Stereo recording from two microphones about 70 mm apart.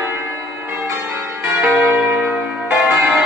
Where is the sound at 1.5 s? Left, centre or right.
Right.